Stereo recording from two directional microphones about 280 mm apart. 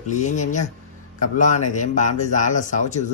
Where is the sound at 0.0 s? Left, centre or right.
Left.